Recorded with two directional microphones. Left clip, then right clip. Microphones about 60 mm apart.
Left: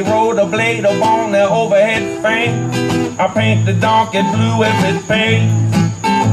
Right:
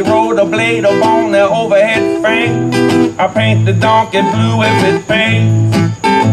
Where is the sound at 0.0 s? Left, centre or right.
Right.